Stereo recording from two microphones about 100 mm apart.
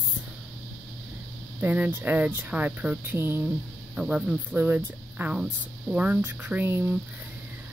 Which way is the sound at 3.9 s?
10° right (ahead or behind).